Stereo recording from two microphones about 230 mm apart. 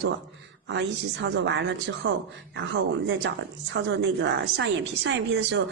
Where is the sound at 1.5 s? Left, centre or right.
Right.